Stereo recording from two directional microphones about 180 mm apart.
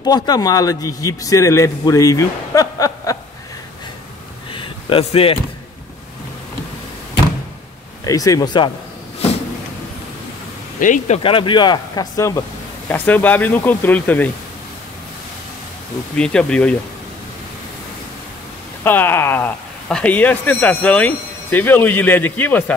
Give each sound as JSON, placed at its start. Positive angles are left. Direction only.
{"t": 0.0, "sound": "a man's voice", "side_deg": 20}
{"t": 4.6, "sound": "slam", "side_deg": 30}
{"t": 8.0, "sound": "a man's voice", "side_deg": 20}
{"t": 10.8, "sound": "speech", "side_deg": 45}
{"t": 11.2, "sound": "speech", "side_deg": 30}
{"t": 16.2, "sound": "speech", "side_deg": 5}
{"t": 18.9, "sound": "speech", "side_deg": 10}